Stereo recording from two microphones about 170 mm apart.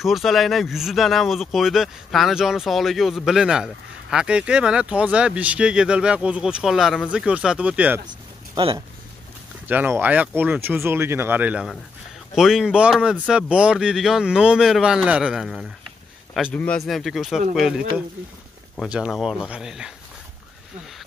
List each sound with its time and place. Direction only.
0.0 s speech: centre (ahead or behind)
8.5 s speech: 30° right (ahead or behind)
9.7 s speech: 10° right (ahead or behind)